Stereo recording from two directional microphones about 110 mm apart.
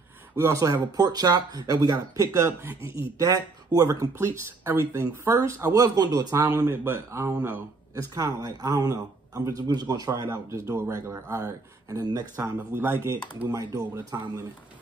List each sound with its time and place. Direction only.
0.4 s speech: 25° right (ahead or behind)
3.2 s speech: 35° right (ahead or behind)
6.7 s speech: 25° right (ahead or behind)
7.3 s speech: 15° right (ahead or behind)
7.9 s speech: 35° right (ahead or behind)